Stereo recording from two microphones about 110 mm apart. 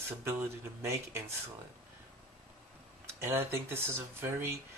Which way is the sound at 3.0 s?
25° right (ahead or behind).